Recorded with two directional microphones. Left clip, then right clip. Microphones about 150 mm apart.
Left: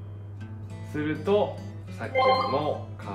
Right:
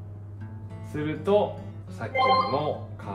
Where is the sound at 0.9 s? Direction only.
20° right (ahead or behind).